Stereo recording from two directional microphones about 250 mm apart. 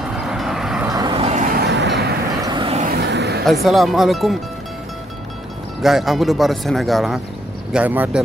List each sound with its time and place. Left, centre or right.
0.2 s vehicle: centre
0.8 s vehicle: centre
1.5 s music: right
2.4 s vehicle: centre
2.9 s vehicle: right
3.4 s speech: centre
5.8 s speech: centre